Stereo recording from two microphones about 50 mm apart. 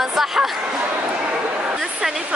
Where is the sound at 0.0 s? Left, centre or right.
Centre.